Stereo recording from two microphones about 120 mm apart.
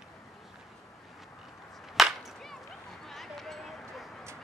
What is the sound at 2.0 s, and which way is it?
Whip, centre (ahead or behind).